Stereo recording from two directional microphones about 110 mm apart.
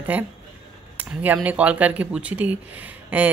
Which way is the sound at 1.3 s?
10° right (ahead or behind).